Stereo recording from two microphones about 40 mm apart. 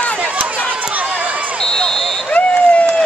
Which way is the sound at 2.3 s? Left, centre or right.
Left.